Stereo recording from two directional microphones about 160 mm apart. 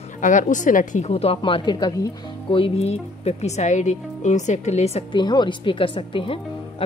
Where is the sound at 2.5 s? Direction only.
40° left (ahead or behind).